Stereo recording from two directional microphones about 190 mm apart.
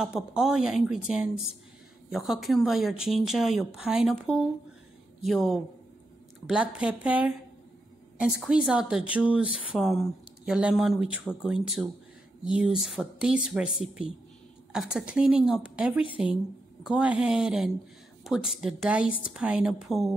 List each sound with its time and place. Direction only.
0.0 s speech: 5° right (ahead or behind)